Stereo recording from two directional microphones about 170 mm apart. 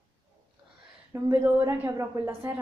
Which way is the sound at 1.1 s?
15° right (ahead or behind).